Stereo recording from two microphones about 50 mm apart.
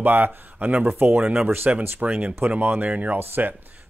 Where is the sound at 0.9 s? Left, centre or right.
Right.